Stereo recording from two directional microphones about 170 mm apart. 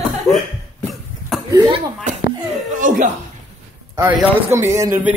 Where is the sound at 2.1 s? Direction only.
45° right (ahead or behind).